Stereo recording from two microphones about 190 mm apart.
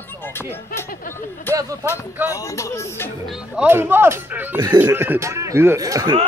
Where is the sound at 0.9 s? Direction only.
45° left (ahead or behind).